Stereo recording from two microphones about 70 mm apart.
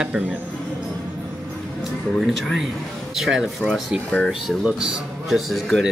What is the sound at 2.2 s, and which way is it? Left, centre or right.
Speech, centre.